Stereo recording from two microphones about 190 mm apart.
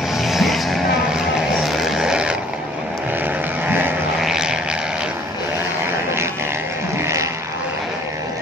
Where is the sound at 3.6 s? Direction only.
10° right (ahead or behind).